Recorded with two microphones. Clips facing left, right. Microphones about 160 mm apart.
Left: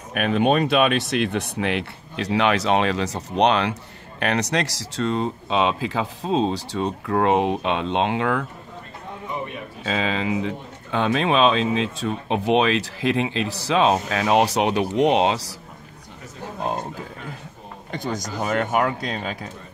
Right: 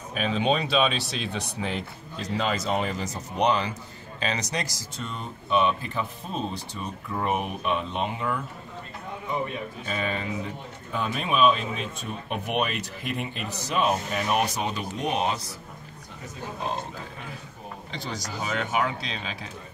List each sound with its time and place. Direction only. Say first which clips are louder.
0.1 s speech: left 5 dB; 60° left (ahead or behind); by 8.5 s 90° left
9.8 s speech: left 7 dB; 90° left
17.9 s speech: left 7 dB; 50° left (ahead or behind)